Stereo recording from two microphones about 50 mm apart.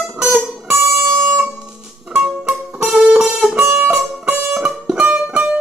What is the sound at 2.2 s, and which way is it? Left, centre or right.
Music, centre.